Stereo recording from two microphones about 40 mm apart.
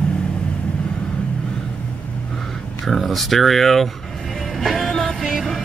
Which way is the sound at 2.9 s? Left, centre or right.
Centre.